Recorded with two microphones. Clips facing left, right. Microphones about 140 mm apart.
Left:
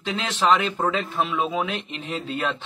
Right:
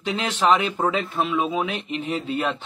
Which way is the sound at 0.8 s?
Centre (ahead or behind).